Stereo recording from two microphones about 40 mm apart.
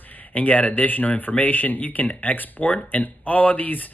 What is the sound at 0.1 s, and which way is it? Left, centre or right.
Speech, left.